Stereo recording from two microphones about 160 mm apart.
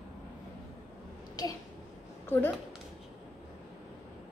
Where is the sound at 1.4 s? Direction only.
25° left (ahead or behind).